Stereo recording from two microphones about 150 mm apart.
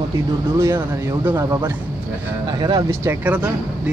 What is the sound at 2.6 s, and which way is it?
Speech, 30° right (ahead or behind).